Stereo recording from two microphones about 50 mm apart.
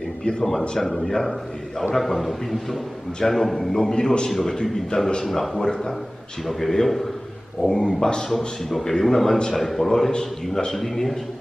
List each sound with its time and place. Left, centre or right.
0.2 s a man's voice: centre
0.5 s a man's voice: centre
4.3 s a man's voice: centre